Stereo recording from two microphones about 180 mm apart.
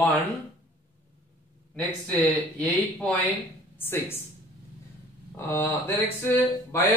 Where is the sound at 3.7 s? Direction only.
10° left (ahead or behind).